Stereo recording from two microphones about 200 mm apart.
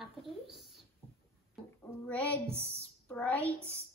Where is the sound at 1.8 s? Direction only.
5° left (ahead or behind).